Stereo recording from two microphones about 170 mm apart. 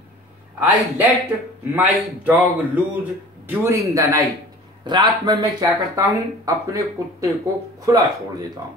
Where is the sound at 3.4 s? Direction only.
15° right (ahead or behind).